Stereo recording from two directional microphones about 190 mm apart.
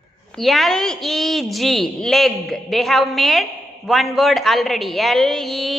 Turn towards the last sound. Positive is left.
turn(degrees=0)  # may be behind; listen again after turning